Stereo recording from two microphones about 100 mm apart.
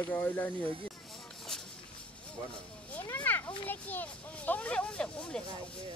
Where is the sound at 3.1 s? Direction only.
20° left (ahead or behind).